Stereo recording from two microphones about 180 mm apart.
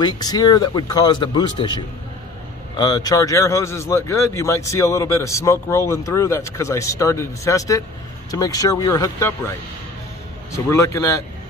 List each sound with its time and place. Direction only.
0.0 s speech: 20° left (ahead or behind)
10.5 s speech: 15° left (ahead or behind)